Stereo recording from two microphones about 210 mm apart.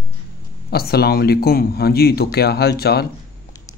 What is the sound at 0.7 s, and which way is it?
Speech, 50° left (ahead or behind).